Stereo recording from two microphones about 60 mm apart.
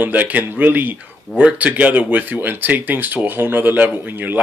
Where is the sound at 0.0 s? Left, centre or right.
Right.